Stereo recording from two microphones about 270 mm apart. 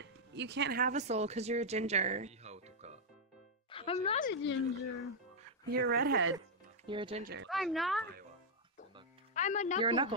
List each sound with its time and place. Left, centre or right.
0.0 s speech: right
3.7 s speech: centre
4.3 s speech: left
5.7 s speech: right
6.9 s speech: centre
7.4 s speech: centre
9.3 s music: left
9.8 s speech: centre